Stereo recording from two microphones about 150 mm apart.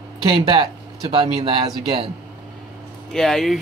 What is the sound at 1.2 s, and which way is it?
Speech, 30° right (ahead or behind).